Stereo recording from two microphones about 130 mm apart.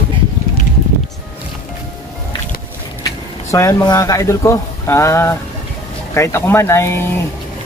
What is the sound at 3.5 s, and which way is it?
Speech, 25° left (ahead or behind).